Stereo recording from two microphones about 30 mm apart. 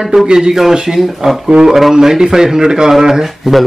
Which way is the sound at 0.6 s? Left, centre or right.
Centre.